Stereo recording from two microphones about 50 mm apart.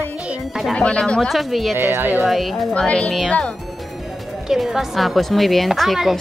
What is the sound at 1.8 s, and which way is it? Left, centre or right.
Speech, right.